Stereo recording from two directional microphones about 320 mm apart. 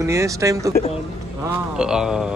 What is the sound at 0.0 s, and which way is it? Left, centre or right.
Speech, centre.